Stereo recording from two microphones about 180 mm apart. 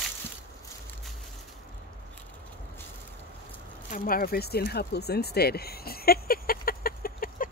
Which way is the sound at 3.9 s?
50° left (ahead or behind).